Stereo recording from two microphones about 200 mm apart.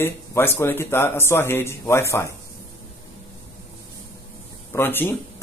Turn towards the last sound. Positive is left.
turn(degrees=10)  # may be behind; listen again after turning